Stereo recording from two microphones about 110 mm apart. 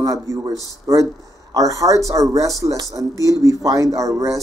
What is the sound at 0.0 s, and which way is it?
Speech, 30° right (ahead or behind).